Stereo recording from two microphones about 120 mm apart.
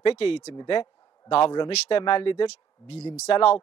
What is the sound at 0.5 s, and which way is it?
A man's voice, 40° left (ahead or behind).